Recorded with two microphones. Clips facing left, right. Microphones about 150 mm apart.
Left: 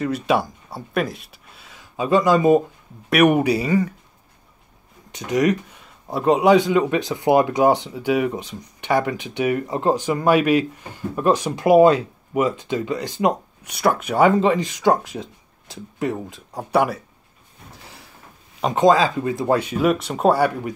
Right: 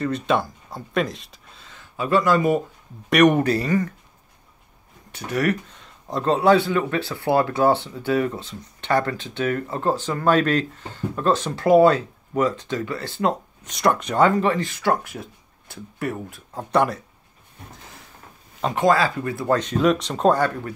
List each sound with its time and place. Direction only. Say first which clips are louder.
0.0 s speech: left 2 dB; 10° left (ahead or behind)
5.1 s speech: left 4 dB; 15° left (ahead or behind)
16.5 s speech: left 1 dB; 10° left (ahead or behind)
18.6 s speech: left 3 dB; 20° left (ahead or behind)